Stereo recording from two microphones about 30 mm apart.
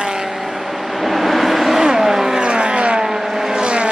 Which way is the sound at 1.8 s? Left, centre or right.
Centre.